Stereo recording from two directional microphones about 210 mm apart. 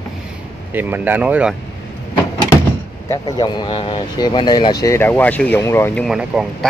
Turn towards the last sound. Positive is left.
turn(degrees=5)  # may be behind; listen again after turning